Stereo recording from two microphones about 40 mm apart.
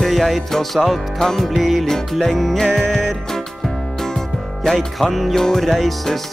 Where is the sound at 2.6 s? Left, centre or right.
Centre.